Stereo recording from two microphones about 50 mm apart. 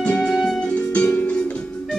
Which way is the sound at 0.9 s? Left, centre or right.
Left.